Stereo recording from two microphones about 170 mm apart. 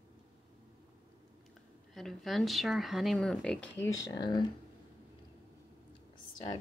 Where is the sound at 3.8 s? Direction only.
20° left (ahead or behind).